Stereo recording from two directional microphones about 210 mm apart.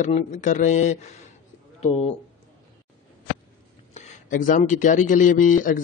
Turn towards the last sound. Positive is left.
turn(degrees=40)  # may be behind; listen again after turning